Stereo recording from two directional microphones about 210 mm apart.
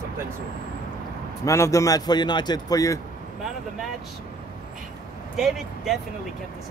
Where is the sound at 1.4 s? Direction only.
15° left (ahead or behind).